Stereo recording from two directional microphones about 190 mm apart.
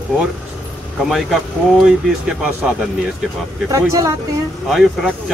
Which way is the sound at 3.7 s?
15° right (ahead or behind).